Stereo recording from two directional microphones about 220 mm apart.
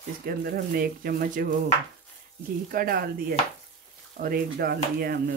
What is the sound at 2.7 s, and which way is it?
Speech, 40° right (ahead or behind).